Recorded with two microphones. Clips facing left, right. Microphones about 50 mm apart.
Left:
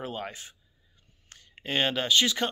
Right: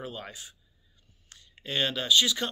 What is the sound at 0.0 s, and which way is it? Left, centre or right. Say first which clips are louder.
Speech: left 4 dB; left.